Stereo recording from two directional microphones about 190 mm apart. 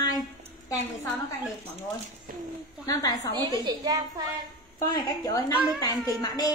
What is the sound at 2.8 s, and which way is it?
Speech, 20° left (ahead or behind).